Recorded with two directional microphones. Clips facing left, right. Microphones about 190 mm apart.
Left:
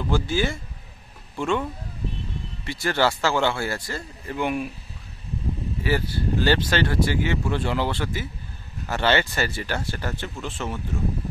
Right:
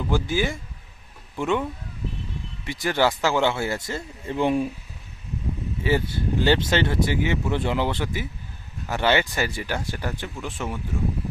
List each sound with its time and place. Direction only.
0.1 s speech: 15° right (ahead or behind); by 4.6 s 30° right (ahead or behind)
5.9 s speech: 20° right (ahead or behind)